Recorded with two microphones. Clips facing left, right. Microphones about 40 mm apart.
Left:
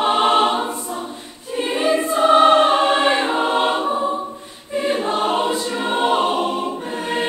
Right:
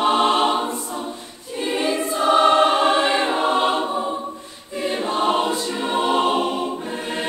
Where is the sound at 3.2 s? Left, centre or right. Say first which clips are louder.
Left 1 dB; centre.